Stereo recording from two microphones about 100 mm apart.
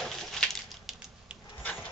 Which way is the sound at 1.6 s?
15° left (ahead or behind).